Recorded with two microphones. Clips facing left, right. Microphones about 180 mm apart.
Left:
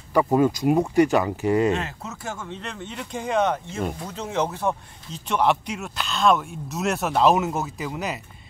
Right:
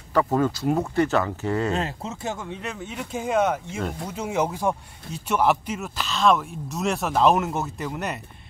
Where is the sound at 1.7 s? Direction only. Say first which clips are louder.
Right 1 dB; 30° right (ahead or behind).